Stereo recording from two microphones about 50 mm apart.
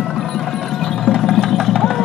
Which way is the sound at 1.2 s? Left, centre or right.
Centre.